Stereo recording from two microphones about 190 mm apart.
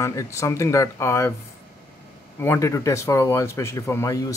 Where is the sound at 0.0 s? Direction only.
15° left (ahead or behind).